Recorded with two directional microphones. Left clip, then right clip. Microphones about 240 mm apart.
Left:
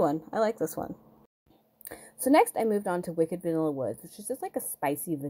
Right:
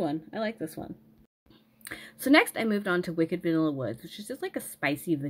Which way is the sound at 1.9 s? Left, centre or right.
Centre.